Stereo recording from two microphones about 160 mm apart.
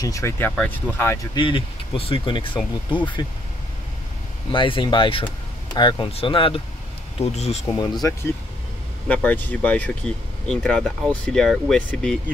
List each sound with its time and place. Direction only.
0.0 s speech: 20° left (ahead or behind)
1.3 s speech: 30° left (ahead or behind)
4.5 s speech: 30° left (ahead or behind)
7.7 s speech: 25° left (ahead or behind)
9.0 s speech: 10° left (ahead or behind)